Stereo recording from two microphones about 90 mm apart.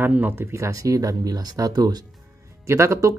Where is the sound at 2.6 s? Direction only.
35° right (ahead or behind).